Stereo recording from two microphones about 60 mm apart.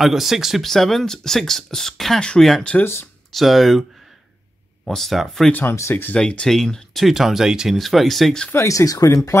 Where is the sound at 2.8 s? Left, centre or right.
Left.